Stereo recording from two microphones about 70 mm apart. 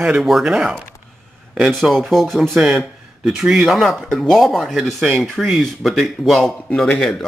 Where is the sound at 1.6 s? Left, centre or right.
Centre.